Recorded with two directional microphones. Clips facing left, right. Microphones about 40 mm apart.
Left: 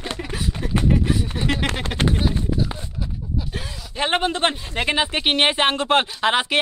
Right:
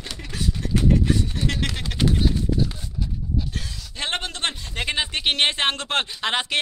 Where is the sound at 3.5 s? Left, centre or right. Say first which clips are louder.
Left 5 dB; centre.